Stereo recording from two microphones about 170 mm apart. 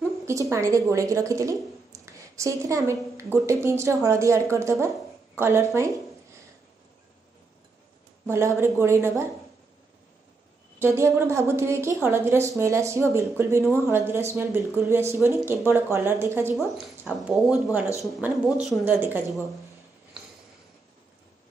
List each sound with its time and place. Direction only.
0.2 s a woman's voice: 20° right (ahead or behind)
8.3 s a woman's voice: 15° right (ahead or behind)
10.8 s a woman's voice: 15° right (ahead or behind)
16.5 s a woman's voice: centre (ahead or behind)
20.2 s a sound: centre (ahead or behind)